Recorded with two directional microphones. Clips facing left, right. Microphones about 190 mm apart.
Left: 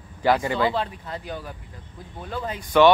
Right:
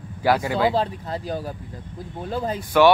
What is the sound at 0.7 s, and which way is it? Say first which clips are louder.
Speech: right 4 dB; 35° right (ahead or behind).